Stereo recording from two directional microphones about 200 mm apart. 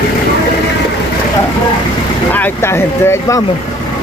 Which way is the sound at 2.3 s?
10° left (ahead or behind).